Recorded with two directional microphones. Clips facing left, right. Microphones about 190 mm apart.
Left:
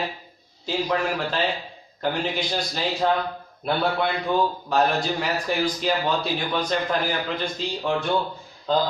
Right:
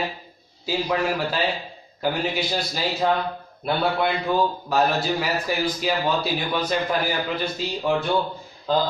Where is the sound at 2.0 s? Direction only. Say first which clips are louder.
Right 1 dB; 5° right (ahead or behind).